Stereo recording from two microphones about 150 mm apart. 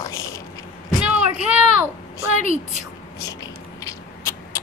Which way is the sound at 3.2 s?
25° left (ahead or behind).